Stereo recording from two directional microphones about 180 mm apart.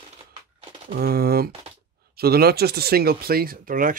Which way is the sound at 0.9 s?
60° right (ahead or behind).